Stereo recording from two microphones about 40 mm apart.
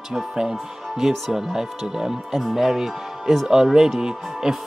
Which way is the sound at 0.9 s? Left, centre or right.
Centre.